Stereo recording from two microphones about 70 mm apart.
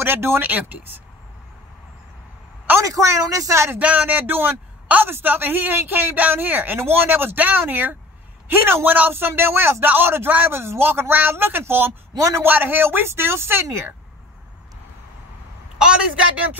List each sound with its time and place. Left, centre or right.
0.0 s speech: right
2.8 s speech: right
3.7 s a man's voice: right
12.2 s speech: right
12.4 s a man's voice: right
15.8 s a woman's voice: centre